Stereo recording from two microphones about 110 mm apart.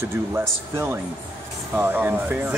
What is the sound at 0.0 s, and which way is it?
Speech, 25° right (ahead or behind).